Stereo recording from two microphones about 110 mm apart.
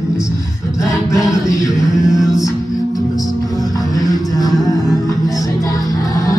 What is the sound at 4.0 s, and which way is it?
Music, 35° left (ahead or behind).